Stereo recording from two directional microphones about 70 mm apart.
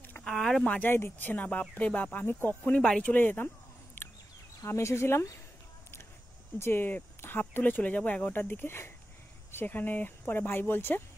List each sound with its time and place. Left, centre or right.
0.2 s a sound: centre
0.7 s speech: left
2.6 s speech: centre
3.1 s speech: left
4.0 s bird: left
4.6 s speech: left
6.6 s speech: left